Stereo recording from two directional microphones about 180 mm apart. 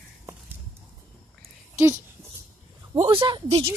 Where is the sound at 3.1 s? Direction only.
25° right (ahead or behind).